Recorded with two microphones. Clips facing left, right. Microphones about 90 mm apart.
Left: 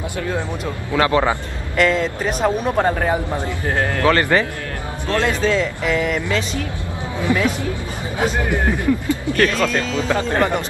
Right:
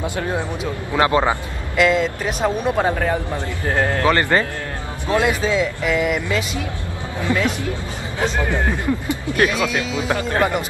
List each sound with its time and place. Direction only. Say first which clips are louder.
0.9 s speech: even; 25° right (ahead or behind)
1.8 s speech: even; 5° right (ahead or behind)
3.7 s speech: even; 20° right (ahead or behind)
7.3 s speech: left 1 dB; 20° left (ahead or behind)
8.6 s speech: left 3 dB; 15° right (ahead or behind)